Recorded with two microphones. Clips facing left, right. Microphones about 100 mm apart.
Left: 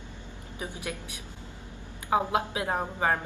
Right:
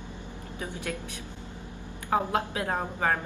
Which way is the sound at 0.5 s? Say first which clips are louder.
Right 1 dB; 15° left (ahead or behind).